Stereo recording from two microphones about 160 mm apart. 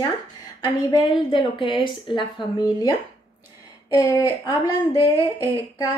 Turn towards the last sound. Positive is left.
turn(degrees=20)  # may be behind; listen again after turning